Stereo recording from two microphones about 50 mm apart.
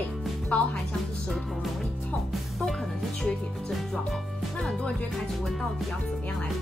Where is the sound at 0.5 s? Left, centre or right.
Left.